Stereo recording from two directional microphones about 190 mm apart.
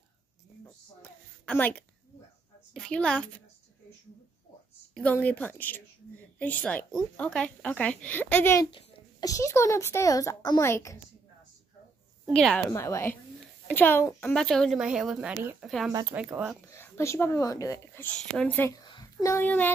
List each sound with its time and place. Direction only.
1.4 s a woman's voice: 10° left (ahead or behind)
4.9 s a child's voice: 10° left (ahead or behind)
8.6 s a child's voice: 20° left (ahead or behind)
12.3 s a child's voice: 5° left (ahead or behind)
15.9 s speech: 20° right (ahead or behind)
16.6 s a child's voice: 15° left (ahead or behind)
18.9 s a sound: 20° left (ahead or behind)